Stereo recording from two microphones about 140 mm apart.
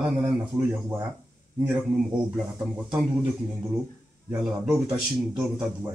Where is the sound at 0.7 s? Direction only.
20° right (ahead or behind).